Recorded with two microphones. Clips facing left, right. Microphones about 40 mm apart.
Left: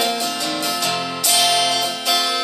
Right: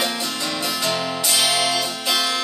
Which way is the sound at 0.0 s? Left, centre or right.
Centre.